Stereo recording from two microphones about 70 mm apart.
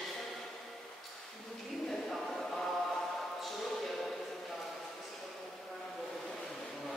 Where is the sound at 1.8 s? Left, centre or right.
Centre.